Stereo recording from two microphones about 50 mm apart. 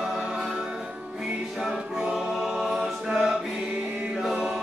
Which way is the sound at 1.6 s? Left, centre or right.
Centre.